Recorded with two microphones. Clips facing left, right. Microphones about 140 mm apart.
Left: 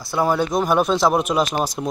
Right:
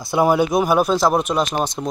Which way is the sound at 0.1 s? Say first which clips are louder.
Right 3 dB; 15° right (ahead or behind).